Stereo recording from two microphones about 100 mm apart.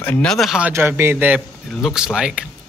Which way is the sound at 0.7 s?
25° right (ahead or behind).